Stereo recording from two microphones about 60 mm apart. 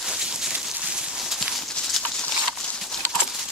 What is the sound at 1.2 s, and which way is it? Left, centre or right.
Clip-clop, centre.